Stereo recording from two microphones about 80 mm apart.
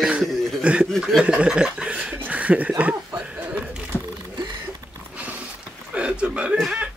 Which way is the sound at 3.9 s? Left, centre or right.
Left.